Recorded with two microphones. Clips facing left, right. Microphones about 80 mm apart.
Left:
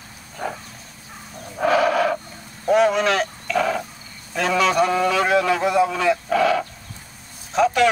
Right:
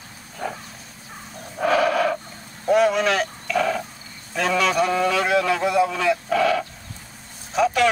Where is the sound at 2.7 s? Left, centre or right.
Centre.